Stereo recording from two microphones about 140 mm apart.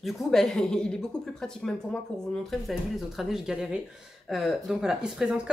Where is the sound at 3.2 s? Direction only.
5° right (ahead or behind).